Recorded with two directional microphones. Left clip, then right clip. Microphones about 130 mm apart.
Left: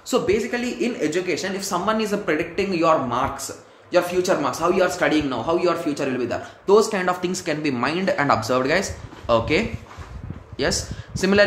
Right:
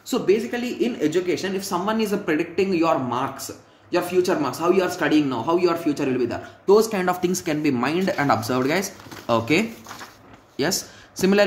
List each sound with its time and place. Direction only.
0.1 s a man's voice: 20° right (ahead or behind)